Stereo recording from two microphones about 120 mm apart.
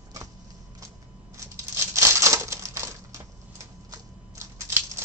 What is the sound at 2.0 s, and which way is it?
Crumpling, 25° right (ahead or behind).